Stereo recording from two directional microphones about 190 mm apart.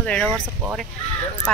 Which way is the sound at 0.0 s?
5° left (ahead or behind).